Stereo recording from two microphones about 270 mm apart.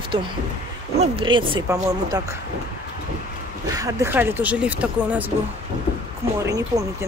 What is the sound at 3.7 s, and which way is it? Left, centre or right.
Speech, centre.